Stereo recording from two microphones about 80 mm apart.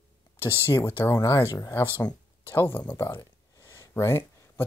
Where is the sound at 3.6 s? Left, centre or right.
Left.